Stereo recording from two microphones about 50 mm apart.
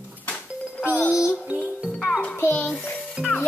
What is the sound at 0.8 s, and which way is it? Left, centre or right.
Speech, left.